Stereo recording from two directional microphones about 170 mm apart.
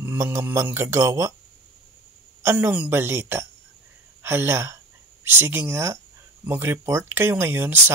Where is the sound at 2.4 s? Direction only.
10° right (ahead or behind).